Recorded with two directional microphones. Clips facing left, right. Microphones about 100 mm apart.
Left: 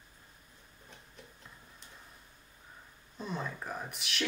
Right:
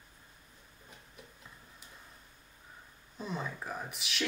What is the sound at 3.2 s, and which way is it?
Speech, centre (ahead or behind).